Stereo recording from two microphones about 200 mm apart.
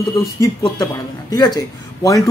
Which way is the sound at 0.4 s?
15° left (ahead or behind).